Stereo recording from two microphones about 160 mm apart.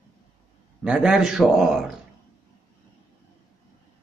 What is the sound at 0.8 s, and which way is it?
Speech, 5° right (ahead or behind).